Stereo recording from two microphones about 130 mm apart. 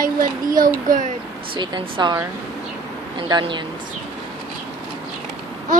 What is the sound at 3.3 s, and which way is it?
Speech, 40° right (ahead or behind).